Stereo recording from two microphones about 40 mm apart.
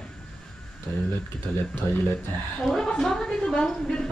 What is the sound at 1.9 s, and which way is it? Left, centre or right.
Speech, left.